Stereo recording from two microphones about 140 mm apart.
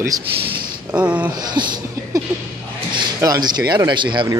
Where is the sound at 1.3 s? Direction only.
30° right (ahead or behind).